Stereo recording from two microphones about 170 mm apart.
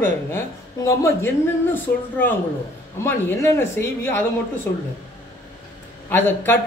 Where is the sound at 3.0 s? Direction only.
15° left (ahead or behind).